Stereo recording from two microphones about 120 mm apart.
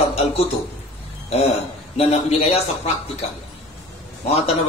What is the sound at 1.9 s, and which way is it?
Speech, 60° left (ahead or behind).